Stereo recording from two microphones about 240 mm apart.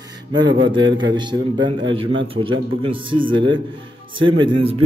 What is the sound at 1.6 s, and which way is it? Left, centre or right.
Speech, right.